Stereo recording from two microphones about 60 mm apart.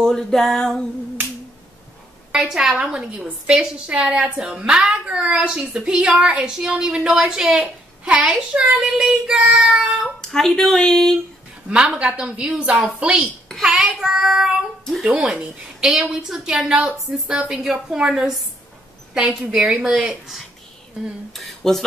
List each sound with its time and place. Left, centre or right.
0.0 s speech: centre
2.3 s a woman's voice: centre
4.4 s a woman's voice: centre
10.2 s speech: centre
11.7 s a woman's voice: centre
15.1 s a woman's voice: centre
15.8 s a woman's voice: centre